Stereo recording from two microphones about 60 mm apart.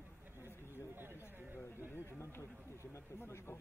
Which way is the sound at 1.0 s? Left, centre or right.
Right.